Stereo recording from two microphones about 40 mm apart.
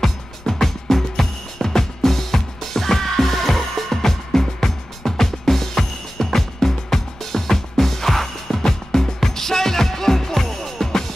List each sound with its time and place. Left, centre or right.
0.0 s music: centre